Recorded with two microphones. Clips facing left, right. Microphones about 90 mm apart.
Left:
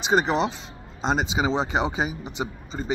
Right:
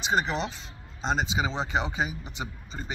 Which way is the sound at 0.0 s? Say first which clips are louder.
Left 6 dB; 20° left (ahead or behind).